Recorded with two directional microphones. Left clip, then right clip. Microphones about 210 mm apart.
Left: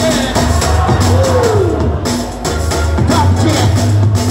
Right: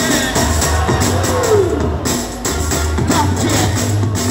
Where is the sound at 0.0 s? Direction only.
50° left (ahead or behind).